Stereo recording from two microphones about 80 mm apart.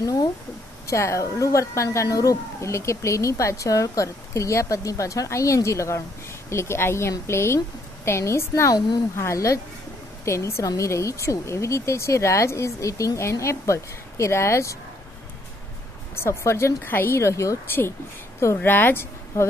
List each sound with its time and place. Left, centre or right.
0.0 s speech: left
8.7 s speech: left
9.1 s speech: left
16.2 s speech: left
18.6 s speech: left